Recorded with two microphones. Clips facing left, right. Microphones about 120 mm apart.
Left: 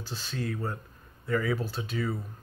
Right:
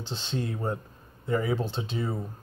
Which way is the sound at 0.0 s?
25° right (ahead or behind).